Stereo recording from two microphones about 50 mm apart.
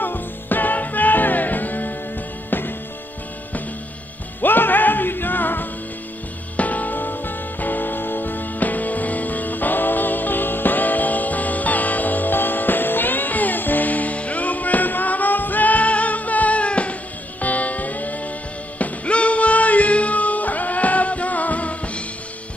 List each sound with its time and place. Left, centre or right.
0.0 s music: left
4.4 s music: left